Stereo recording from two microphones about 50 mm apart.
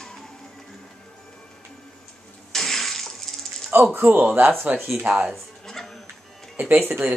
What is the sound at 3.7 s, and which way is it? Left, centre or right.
Speech, right.